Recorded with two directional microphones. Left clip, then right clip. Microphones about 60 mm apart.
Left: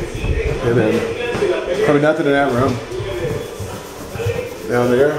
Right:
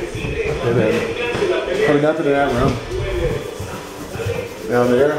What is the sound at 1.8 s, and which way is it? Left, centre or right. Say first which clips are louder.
Speech: left 2 dB; centre.